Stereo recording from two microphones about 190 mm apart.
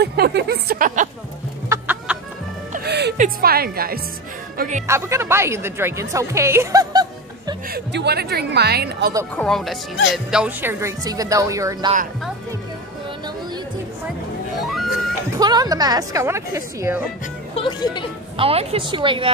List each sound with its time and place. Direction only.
0.0 s a sound: 60° right (ahead or behind)
1.7 s chicken: 10° right (ahead or behind)
2.7 s music: 60° right (ahead or behind)
3.2 s speech: 50° right (ahead or behind)
4.6 s speech: 40° right (ahead or behind)
4.8 s a woman's voice: 15° right (ahead or behind)
7.7 s a woman's voice: 60° right (ahead or behind)
9.4 s a woman's voice: centre (ahead or behind); by 11.9 s 15° right (ahead or behind)
14.6 s music: centre (ahead or behind)
15.3 s a woman's voice: 20° right (ahead or behind)
17.6 s speech: 25° left (ahead or behind)
18.3 s a woman's voice: 30° right (ahead or behind)